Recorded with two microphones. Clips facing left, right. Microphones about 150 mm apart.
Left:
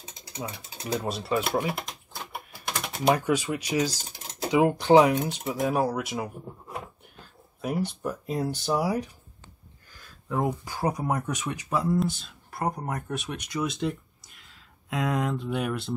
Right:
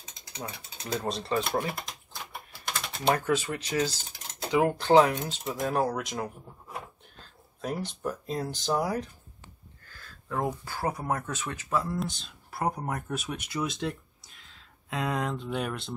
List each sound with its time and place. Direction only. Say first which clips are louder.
0.9 s speech: left 2 dB; 5° left (ahead or behind)
2.7 s speech: left 3 dB; 15° left (ahead or behind)
7.6 s speech: left 3 dB; 10° left (ahead or behind)
9.8 s a sound: left 3 dB; 15° left (ahead or behind)
10.6 s speech: left 3 dB; 15° left (ahead or behind)
12.0 s speech: left 6 dB; centre (ahead or behind)